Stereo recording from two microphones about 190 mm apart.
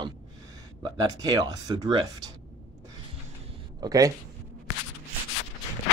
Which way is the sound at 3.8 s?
20° right (ahead or behind).